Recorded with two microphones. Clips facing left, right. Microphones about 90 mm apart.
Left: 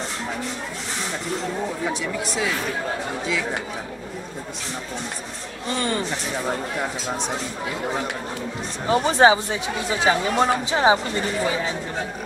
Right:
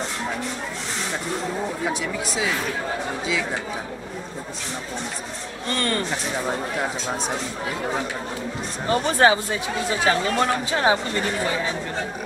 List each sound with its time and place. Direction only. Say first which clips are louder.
1.9 s speech: even; 5° right (ahead or behind)
5.7 s speech: even; 10° left (ahead or behind)
8.8 s speech: left 2 dB; 15° left (ahead or behind)